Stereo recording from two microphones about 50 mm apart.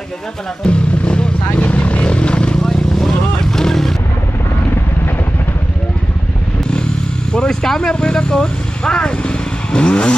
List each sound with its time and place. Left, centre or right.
0.7 s vehicle: left
2.6 s vehicle: centre
7.3 s speech: centre